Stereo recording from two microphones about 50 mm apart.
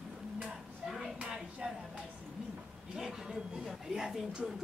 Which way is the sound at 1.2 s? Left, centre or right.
Right.